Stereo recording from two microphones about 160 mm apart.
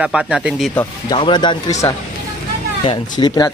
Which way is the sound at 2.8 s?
30° left (ahead or behind).